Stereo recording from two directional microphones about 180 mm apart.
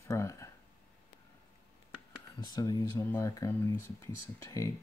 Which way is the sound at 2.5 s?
20° left (ahead or behind).